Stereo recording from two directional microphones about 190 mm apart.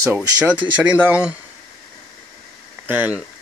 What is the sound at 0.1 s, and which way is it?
Speech, 5° right (ahead or behind).